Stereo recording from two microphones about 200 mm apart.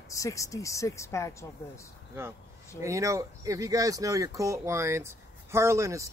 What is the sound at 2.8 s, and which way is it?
Speech, 15° right (ahead or behind).